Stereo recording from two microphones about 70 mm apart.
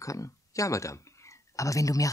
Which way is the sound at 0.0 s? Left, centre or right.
Left.